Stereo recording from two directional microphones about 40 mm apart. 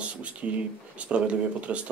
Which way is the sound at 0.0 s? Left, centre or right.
Right.